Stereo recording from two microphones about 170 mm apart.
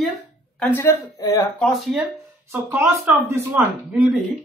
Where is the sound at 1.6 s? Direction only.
Centre (ahead or behind).